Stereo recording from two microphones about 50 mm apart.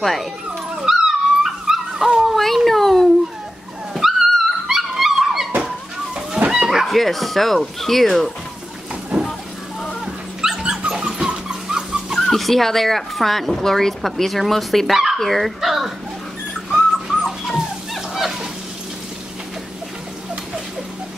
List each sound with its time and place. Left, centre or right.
0.0 s speech: centre
0.8 s dog: centre
2.3 s a sound: centre
3.9 s dog: centre
6.5 s speech: centre
9.1 s a sound: centre
10.0 s dog: centre
12.2 s speech: centre
16.7 s bird: centre
17.5 s music: centre